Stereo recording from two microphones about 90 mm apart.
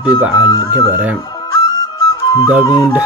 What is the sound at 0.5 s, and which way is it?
Speech, 40° left (ahead or behind).